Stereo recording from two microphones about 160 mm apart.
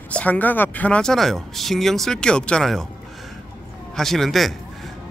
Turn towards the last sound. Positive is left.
turn(degrees=0)  # may be behind; listen again after turning